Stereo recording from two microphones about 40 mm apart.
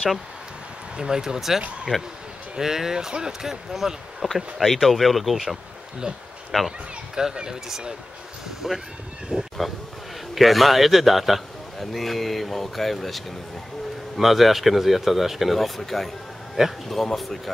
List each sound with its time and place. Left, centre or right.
0.9 s a man's voice: centre
6.5 s speech: centre
7.2 s speech: centre
9.3 s speech: right
10.3 s a man's voice: centre
16.6 s speech: centre
16.9 s a man's voice: centre